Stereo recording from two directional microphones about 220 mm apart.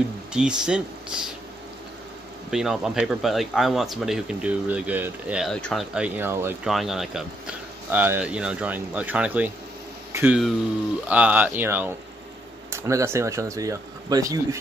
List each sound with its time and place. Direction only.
0.3 s speech: 5° right (ahead or behind)
2.5 s speech: centre (ahead or behind)